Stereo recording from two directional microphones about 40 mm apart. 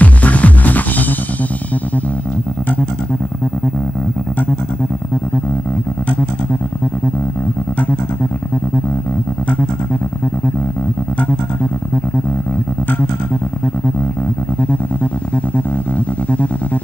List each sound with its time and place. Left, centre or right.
0.0 s music: left